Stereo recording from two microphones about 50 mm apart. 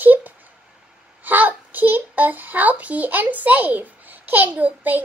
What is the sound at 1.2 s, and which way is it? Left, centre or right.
A child's voice, right.